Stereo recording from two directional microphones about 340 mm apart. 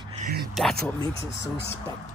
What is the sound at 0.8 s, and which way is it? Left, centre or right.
Speech, centre.